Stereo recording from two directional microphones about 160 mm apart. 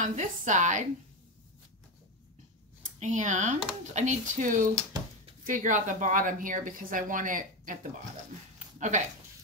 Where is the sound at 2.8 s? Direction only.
50° right (ahead or behind).